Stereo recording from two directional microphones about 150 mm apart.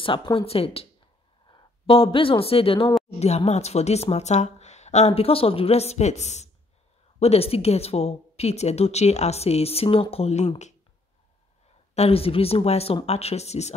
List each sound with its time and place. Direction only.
0.0 s a woman's voice: 35° left (ahead or behind)
11.9 s a woman's voice: 40° left (ahead or behind)